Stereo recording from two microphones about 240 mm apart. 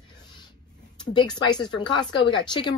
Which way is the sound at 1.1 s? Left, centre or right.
Centre.